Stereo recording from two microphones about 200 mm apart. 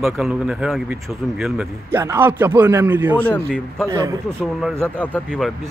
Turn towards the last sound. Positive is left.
turn(degrees=0)  # may be behind; listen again after turning